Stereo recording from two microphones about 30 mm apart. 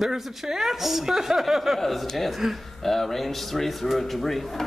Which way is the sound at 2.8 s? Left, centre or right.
Centre.